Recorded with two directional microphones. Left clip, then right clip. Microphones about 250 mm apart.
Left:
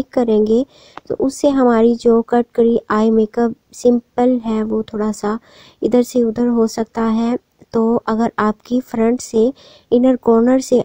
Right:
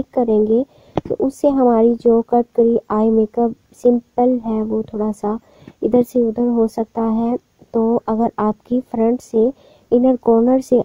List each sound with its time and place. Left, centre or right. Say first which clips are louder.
0.1 s speech: left 1 dB; left